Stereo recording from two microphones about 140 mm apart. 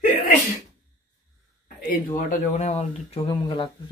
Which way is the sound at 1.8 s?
70° left (ahead or behind).